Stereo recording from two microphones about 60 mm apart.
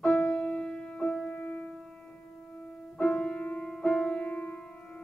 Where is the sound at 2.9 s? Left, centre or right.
Centre.